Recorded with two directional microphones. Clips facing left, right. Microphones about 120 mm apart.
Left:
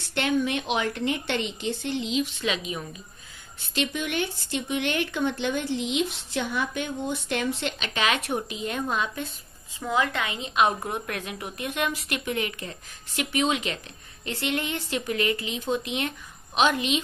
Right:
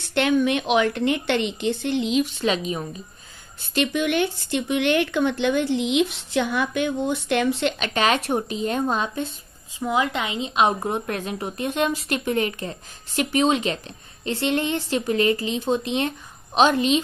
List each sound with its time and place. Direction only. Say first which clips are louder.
0.1 s speech: right 5 dB; 70° right (ahead or behind)
2.4 s a woman's voice: right 6 dB; 35° right (ahead or behind)
3.7 s speech: right 6 dB; 70° right (ahead or behind)
7.8 s a woman's voice: right 3 dB; 40° right (ahead or behind)
9.8 s a woman's voice: right 3 dB; 20° right (ahead or behind); by 17.0 s 35° right (ahead or behind)